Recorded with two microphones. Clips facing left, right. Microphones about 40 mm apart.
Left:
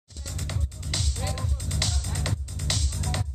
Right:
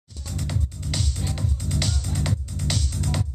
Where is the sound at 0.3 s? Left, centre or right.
Centre.